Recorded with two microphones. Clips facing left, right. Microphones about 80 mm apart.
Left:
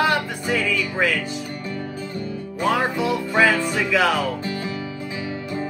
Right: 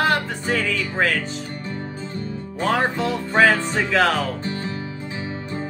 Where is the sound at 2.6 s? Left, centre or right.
Right.